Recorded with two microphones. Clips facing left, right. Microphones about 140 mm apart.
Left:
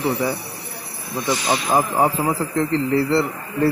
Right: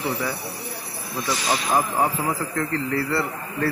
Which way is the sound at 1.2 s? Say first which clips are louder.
Left 3 dB; 15° left (ahead or behind).